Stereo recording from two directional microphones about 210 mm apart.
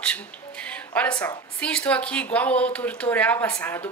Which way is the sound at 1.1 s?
20° left (ahead or behind).